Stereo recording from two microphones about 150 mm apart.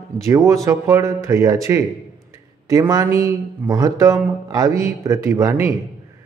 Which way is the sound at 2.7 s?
20° right (ahead or behind).